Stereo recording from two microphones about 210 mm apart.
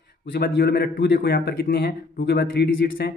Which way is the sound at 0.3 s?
50° left (ahead or behind).